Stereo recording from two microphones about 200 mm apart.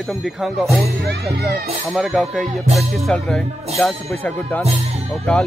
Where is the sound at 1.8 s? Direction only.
Centre (ahead or behind).